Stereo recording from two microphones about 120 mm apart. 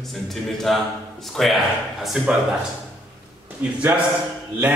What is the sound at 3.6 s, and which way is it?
Speech, 15° right (ahead or behind).